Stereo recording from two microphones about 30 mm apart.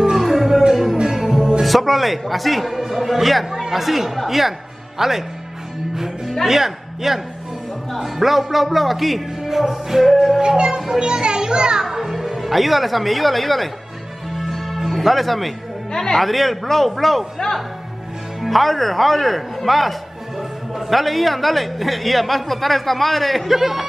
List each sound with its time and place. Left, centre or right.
0.1 s music: centre
1.6 s a man's voice: centre
5.9 s music: centre
6.4 s a man's voice: centre
11.0 s a child's voice: right
11.8 s music: centre
12.2 s speech: centre
14.3 s music: centre
14.8 s speech: centre
15.9 s speech: centre
16.2 s a man's voice: centre
18.4 s a man's voice: centre
23.5 s a man's voice: centre